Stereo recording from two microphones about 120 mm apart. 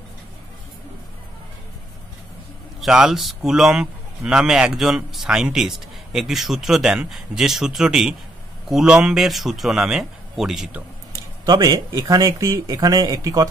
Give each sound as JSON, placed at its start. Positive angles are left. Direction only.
{"t": 2.8, "sound": "speech", "side_deg": -5}
{"t": 11.4, "sound": "speech", "side_deg": -35}